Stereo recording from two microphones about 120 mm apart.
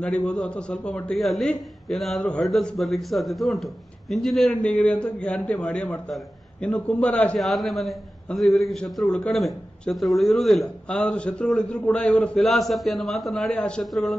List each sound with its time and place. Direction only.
0.0 s a man's voice: 10° left (ahead or behind)